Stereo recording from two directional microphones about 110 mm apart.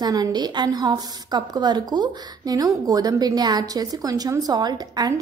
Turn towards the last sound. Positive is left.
turn(degrees=-40)  # may be behind; listen again after turning